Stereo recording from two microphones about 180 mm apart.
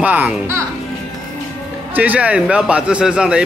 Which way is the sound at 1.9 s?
10° right (ahead or behind).